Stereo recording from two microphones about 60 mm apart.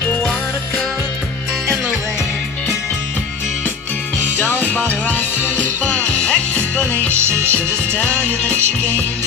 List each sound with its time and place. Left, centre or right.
4.4 s music: left
7.1 s music: right
7.5 s music: left